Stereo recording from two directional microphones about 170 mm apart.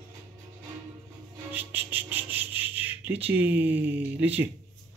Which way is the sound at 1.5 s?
10° right (ahead or behind).